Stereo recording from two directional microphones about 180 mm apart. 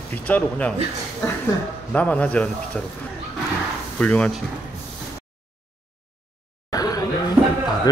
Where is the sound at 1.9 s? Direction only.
10° left (ahead or behind).